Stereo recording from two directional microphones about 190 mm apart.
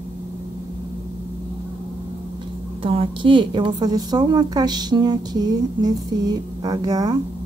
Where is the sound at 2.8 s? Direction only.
30° right (ahead or behind).